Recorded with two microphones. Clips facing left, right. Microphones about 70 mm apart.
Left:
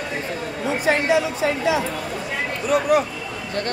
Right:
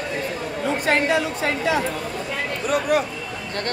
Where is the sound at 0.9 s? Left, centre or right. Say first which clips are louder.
Left 2 dB; right.